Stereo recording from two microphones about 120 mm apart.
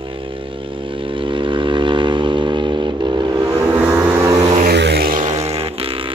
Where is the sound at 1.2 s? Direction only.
45° right (ahead or behind).